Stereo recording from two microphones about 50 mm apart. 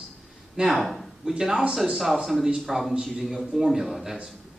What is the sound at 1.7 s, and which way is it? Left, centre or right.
A man's voice, centre.